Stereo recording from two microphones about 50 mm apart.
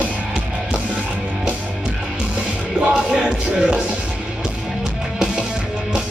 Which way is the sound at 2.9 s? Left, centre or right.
Centre.